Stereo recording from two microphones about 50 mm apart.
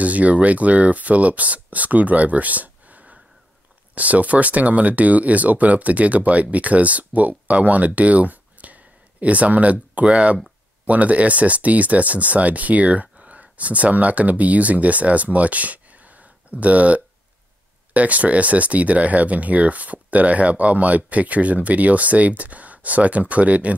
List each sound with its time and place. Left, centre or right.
0.0 s speech: right